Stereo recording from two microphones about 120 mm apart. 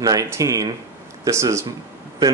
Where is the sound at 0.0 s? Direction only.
30° right (ahead or behind).